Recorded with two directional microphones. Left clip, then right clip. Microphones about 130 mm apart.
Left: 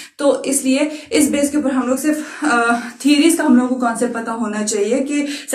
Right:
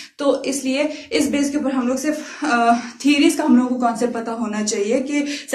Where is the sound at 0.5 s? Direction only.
10° left (ahead or behind).